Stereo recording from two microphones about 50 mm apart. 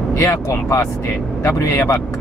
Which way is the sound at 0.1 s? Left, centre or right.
Left.